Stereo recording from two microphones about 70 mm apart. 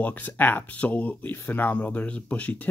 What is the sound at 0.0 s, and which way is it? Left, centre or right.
Speech, left.